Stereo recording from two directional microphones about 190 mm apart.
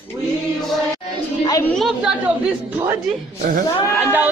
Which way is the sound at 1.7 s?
Centre (ahead or behind).